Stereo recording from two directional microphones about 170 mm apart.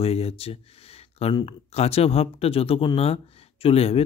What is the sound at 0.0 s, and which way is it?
Speech, 35° left (ahead or behind).